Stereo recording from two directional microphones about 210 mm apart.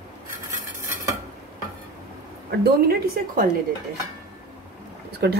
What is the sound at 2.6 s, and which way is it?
Speech, 50° right (ahead or behind).